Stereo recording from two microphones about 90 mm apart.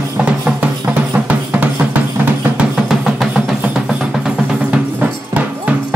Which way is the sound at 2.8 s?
Centre (ahead or behind).